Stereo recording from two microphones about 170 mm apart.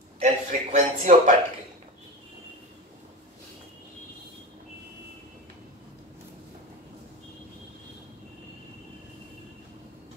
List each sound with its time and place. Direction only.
0.2 s a man's voice: 50° right (ahead or behind)